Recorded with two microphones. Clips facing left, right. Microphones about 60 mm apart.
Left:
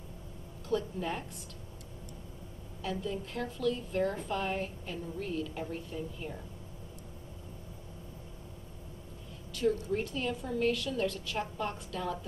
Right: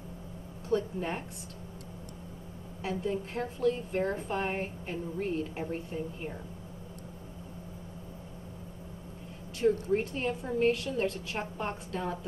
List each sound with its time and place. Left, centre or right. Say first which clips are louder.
0.7 s a woman's voice: right 2 dB; right
2.8 s a woman's voice: right 3 dB; right
9.8 s a woman's voice: right 4 dB; right